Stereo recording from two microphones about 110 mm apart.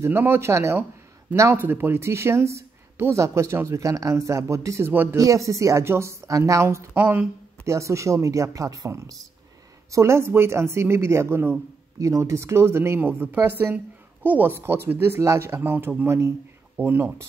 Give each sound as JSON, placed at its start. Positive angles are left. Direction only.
{"t": 0.0, "sound": "a woman's voice", "side_deg": -20}
{"t": 6.9, "sound": "speech", "side_deg": -15}
{"t": 7.6, "sound": "a woman's voice", "side_deg": -25}